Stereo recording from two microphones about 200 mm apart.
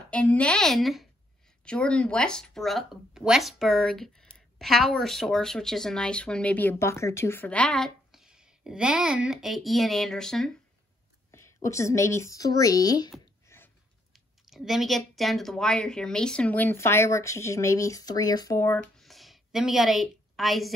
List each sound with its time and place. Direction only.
0.1 s speech: 5° left (ahead or behind)
11.3 s speech: 15° left (ahead or behind)
13.5 s a sound: 15° left (ahead or behind)
14.1 s speech: centre (ahead or behind)